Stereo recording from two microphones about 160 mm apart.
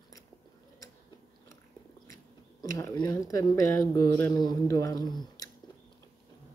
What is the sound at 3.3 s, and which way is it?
A man's voice, 20° left (ahead or behind).